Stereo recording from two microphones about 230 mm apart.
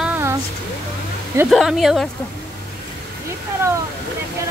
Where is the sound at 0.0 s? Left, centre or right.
Centre.